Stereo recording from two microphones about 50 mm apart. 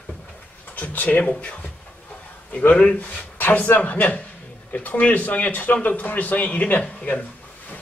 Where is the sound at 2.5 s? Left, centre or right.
Left.